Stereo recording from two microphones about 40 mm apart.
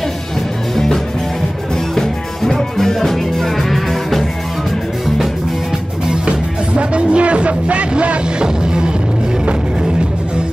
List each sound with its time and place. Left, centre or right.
2.0 s music: centre
6.2 s music: right
8.4 s music: right